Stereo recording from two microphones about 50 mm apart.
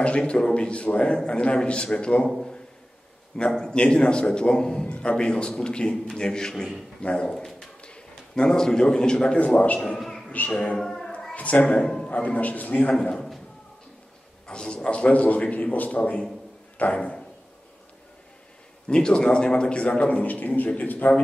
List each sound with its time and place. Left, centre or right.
0.3 s a man's voice: centre
3.3 s a man's voice: centre
7.0 s speech: left
7.2 s dog: centre
7.8 s a man's voice: centre
9.9 s a sound: centre
11.3 s speech: left
11.8 s a man's voice: centre
12.1 s a man's voice: left
14.5 s a man's voice: centre
18.9 s a man's voice: centre; by 21.1 s left